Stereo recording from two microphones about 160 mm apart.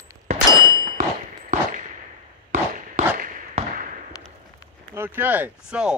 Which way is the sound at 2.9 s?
55° right (ahead or behind).